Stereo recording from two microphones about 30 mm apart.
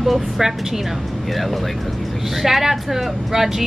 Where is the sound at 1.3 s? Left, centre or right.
Centre.